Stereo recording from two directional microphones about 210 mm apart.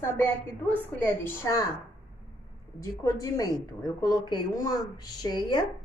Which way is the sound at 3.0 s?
15° left (ahead or behind).